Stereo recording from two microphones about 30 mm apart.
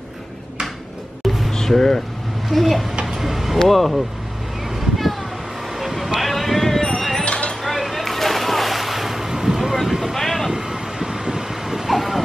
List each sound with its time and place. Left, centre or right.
1.2 s a sound: centre
1.5 s speech: centre
2.5 s speech: centre
3.2 s vehicle: centre
3.6 s speech: centre
4.7 s a sound: centre
5.8 s vehicle: centre
6.2 s a sound: centre
7.2 s a sound: left
7.6 s boat: centre
9.3 s vehicle: centre
10.1 s vehicle: centre
10.5 s vehicle: centre
11.9 s music: centre